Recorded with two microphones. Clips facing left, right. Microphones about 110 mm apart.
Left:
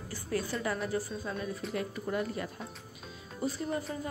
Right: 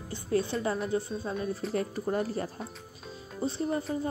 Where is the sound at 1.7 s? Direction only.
35° right (ahead or behind).